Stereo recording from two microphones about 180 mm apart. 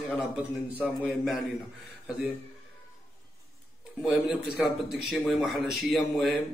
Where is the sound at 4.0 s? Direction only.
Centre (ahead or behind).